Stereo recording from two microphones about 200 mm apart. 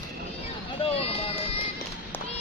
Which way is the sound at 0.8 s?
30° left (ahead or behind).